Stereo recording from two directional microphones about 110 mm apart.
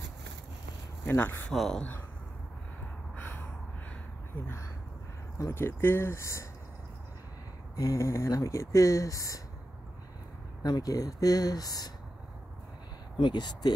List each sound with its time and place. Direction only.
1.0 s speech: 20° left (ahead or behind)
1.5 s speech: 5° left (ahead or behind)
3.2 s gasp: 15° left (ahead or behind)
5.4 s speech: 20° left (ahead or behind)
7.7 s speech: 30° left (ahead or behind)
10.6 s speech: 35° left (ahead or behind)
13.2 s speech: 40° left (ahead or behind)